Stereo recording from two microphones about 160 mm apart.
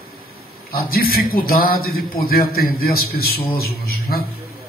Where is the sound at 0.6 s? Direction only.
70° left (ahead or behind).